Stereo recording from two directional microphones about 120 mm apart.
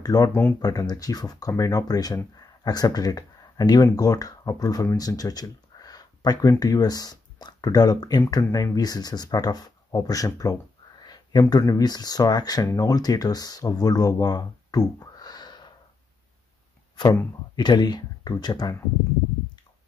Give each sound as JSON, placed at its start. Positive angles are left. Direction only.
{"t": 0.0, "sound": "speech", "side_deg": 30}
{"t": 17.6, "sound": "speech", "side_deg": 35}